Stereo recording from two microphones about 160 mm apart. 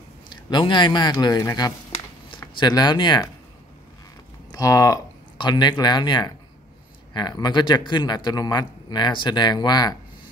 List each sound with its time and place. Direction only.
0.5 s speech: 30° left (ahead or behind)
4.5 s speech: 20° left (ahead or behind)